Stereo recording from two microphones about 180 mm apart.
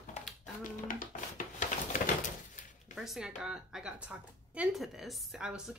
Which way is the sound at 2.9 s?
Centre (ahead or behind).